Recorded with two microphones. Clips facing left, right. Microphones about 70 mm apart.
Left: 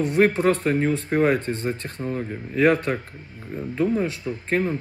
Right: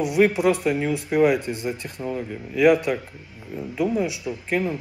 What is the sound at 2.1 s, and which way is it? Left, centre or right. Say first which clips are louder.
Speech: left 1 dB; centre.